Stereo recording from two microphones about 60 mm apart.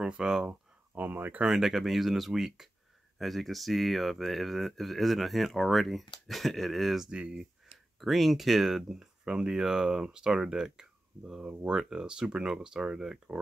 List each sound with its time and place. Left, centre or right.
0.0 s speech: centre
0.9 s speech: right
1.4 s speech: centre
7.1 s speech: centre